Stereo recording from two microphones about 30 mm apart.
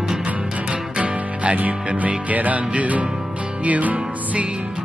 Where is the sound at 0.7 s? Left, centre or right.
Right.